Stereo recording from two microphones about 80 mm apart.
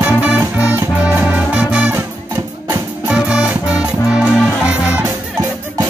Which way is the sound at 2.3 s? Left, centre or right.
Right.